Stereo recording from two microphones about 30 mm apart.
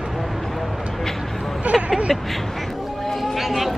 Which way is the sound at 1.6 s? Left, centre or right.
Right.